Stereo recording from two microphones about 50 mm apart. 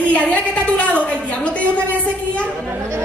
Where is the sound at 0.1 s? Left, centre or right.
Left.